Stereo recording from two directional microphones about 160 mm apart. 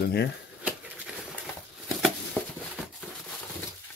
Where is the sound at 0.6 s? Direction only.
10° right (ahead or behind).